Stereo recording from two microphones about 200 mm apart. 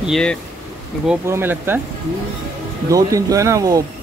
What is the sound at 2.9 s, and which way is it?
Speech, 15° right (ahead or behind).